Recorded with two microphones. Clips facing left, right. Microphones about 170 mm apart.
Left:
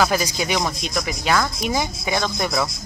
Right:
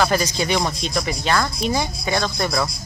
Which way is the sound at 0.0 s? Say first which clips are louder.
Right 1 dB; 10° left (ahead or behind).